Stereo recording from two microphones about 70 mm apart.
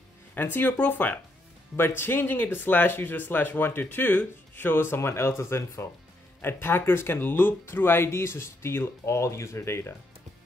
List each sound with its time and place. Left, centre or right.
0.3 s speech: left